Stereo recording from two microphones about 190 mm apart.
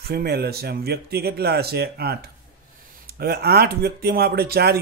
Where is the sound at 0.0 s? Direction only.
55° right (ahead or behind).